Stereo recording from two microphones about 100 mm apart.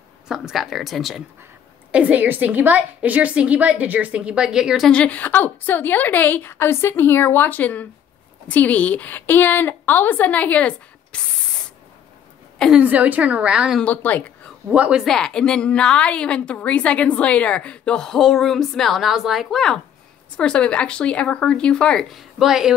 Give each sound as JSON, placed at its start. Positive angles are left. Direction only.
{"t": 0.3, "sound": "speech", "side_deg": -5}
{"t": 1.9, "sound": "a woman's voice", "side_deg": -15}
{"t": 4.8, "sound": "a woman's voice", "side_deg": 10}
{"t": 12.7, "sound": "a woman's voice", "side_deg": -15}
{"t": 13.7, "sound": "speech", "side_deg": 15}
{"t": 14.7, "sound": "a woman's voice", "side_deg": -10}
{"t": 15.0, "sound": "a woman's voice", "side_deg": 5}
{"t": 22.4, "sound": "speech", "side_deg": -5}